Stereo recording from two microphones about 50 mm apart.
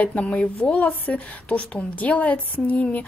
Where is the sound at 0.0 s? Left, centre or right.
Left.